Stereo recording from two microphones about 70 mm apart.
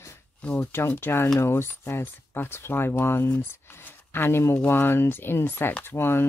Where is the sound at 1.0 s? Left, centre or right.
Left.